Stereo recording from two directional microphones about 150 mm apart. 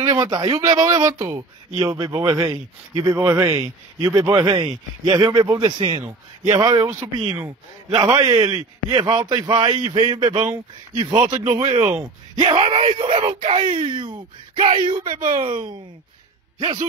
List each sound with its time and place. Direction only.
0.1 s speech: 25° right (ahead or behind)
5.9 s speech: 20° right (ahead or behind)
11.6 s speech: 45° right (ahead or behind)
12.4 s speech: 35° right (ahead or behind)